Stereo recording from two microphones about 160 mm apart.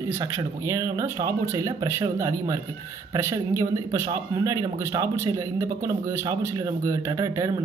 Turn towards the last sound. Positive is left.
turn(degrees=-20)  # may be behind; listen again after turning